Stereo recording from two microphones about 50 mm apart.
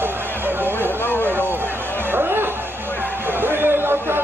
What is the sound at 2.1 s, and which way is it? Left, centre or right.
Music, right.